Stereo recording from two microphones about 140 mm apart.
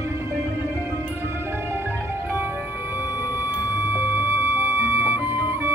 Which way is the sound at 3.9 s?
20° right (ahead or behind).